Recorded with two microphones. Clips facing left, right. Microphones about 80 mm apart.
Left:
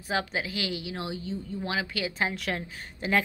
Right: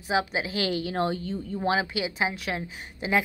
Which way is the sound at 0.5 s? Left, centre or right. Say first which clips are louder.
Right 5 dB; right.